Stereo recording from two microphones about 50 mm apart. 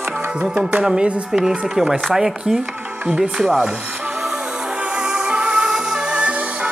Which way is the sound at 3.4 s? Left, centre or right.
Centre.